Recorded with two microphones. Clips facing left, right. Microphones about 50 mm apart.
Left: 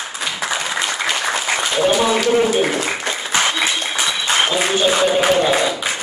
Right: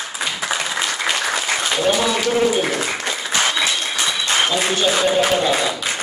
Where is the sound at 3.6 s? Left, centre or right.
Centre.